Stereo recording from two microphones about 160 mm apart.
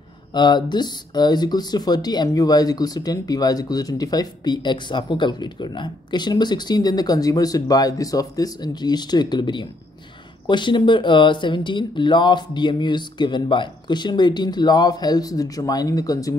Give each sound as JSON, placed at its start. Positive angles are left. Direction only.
{"t": 0.3, "sound": "speech", "side_deg": 30}